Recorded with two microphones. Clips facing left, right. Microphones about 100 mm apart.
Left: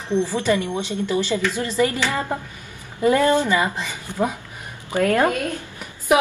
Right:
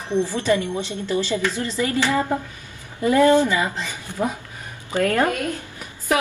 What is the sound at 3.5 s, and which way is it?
A woman's voice, 20° left (ahead or behind).